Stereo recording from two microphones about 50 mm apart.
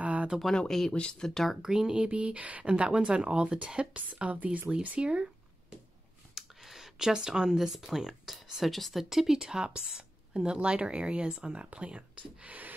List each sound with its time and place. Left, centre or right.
0.0 s a sound: right
0.7 s speech: centre
1.6 s speech: centre
2.0 s speech: right
4.8 s a sound: right
6.3 s speech: centre; by 12.7 s right